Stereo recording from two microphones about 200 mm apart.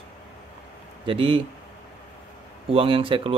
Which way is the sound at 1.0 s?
25° right (ahead or behind).